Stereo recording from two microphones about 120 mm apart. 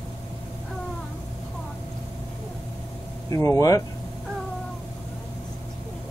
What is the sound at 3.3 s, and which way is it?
Speech, 25° left (ahead or behind).